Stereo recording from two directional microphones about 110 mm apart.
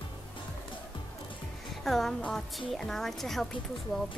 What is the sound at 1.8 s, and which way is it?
A woman's voice, centre (ahead or behind).